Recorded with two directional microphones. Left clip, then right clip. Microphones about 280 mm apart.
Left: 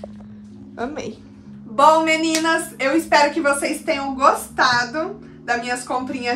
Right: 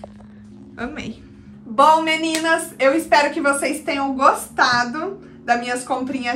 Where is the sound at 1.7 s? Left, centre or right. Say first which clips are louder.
Even; centre.